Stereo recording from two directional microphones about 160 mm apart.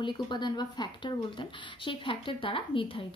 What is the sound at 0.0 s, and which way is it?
Speech, 30° left (ahead or behind).